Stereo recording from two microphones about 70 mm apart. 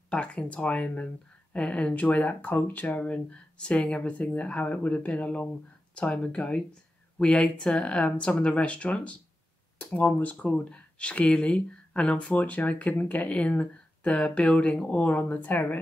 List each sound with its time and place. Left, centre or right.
0.1 s speech: centre